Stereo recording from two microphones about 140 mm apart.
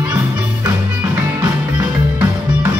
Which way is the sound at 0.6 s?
15° right (ahead or behind).